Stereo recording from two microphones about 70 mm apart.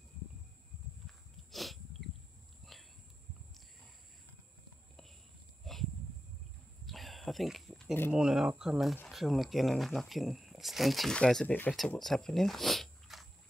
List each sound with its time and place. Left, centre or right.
1.0 s dog: centre
2.6 s a sound: centre
6.9 s a sound: centre
8.1 s speech: centre
11.1 s speech: centre
11.4 s speech: left
12.0 s speech: centre